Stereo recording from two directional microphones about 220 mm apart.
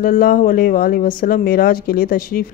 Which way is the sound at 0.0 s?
40° left (ahead or behind).